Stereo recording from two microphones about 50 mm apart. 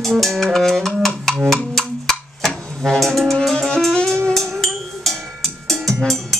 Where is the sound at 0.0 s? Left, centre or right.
Centre.